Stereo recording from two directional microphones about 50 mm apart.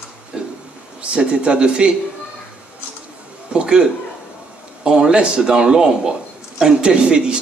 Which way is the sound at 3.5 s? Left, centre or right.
Centre.